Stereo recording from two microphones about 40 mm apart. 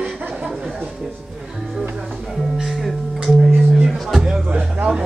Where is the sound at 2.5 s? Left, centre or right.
Centre.